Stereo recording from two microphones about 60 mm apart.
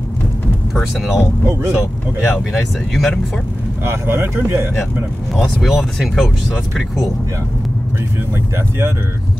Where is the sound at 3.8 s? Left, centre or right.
Right.